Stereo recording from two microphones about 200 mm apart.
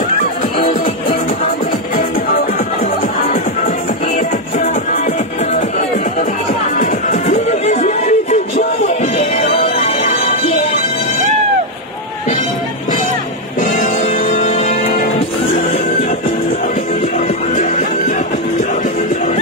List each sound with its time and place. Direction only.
2.0 s music: 45° left (ahead or behind)
4.6 s music: 40° left (ahead or behind)
6.8 s music: 35° left (ahead or behind)
13.6 s music: 45° left (ahead or behind)
17.6 s music: 40° left (ahead or behind)